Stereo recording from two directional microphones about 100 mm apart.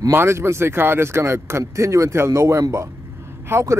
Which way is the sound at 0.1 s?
25° right (ahead or behind).